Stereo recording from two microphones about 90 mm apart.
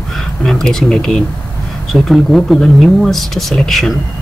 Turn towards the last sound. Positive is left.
turn(degrees=0)  # may be behind; listen again after turning